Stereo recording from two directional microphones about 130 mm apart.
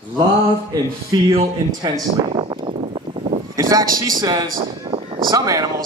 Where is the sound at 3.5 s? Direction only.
25° right (ahead or behind).